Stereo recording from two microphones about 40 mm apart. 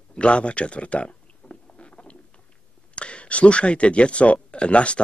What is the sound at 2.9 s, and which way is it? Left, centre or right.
Speech, left.